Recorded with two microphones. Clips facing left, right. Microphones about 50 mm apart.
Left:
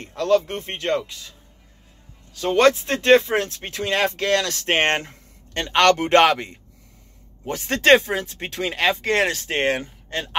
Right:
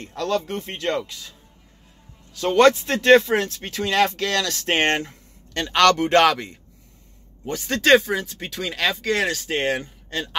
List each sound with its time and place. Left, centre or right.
0.0 s speech: left
2.5 s speech: left
7.6 s speech: left